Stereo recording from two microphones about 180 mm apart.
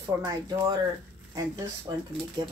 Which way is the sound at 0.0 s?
20° right (ahead or behind).